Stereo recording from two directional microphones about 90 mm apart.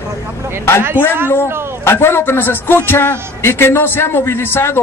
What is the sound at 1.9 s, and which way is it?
A woman's voice, 25° left (ahead or behind).